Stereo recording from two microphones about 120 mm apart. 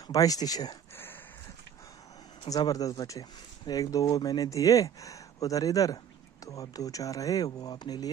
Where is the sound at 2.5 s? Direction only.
30° left (ahead or behind).